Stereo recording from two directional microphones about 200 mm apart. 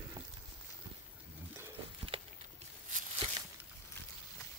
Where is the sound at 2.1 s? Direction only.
25° right (ahead or behind).